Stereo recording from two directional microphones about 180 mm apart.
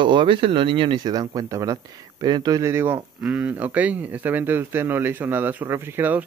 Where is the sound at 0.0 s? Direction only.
25° right (ahead or behind).